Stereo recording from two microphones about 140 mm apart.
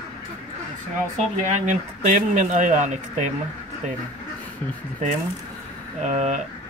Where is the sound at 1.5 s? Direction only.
55° right (ahead or behind).